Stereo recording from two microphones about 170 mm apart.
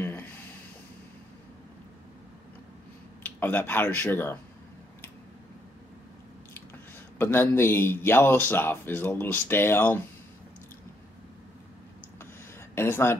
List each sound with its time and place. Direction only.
0.0 s a sound: 10° left (ahead or behind)
3.3 s a man's voice: 10° left (ahead or behind)
7.2 s a man's voice: 15° left (ahead or behind)
12.7 s speech: 15° left (ahead or behind)